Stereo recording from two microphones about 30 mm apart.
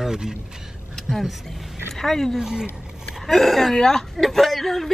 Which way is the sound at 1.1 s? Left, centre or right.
Centre.